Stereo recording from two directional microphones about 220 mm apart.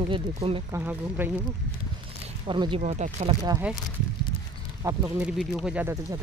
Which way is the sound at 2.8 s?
30° right (ahead or behind).